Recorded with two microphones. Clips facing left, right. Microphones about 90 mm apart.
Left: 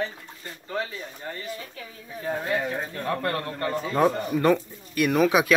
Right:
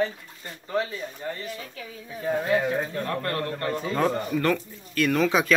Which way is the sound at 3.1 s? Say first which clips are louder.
Left 1 dB; 15° left (ahead or behind).